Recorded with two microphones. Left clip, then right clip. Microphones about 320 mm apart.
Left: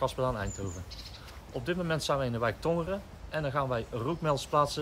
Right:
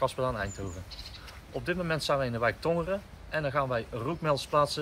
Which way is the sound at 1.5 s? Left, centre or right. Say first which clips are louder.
Right 1 dB; centre.